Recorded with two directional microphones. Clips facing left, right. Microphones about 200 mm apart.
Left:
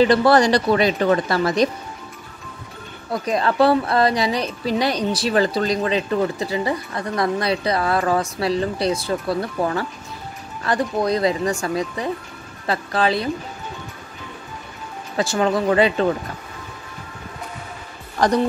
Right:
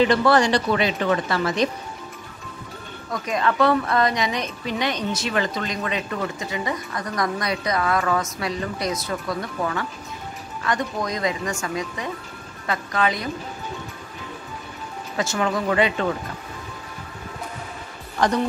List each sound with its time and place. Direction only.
0.0 s a woman's voice: 35° left (ahead or behind)
3.1 s a woman's voice: 35° left (ahead or behind)
15.1 s a woman's voice: 35° left (ahead or behind)
18.2 s a woman's voice: 40° left (ahead or behind)